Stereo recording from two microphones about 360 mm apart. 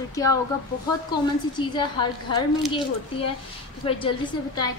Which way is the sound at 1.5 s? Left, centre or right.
Centre.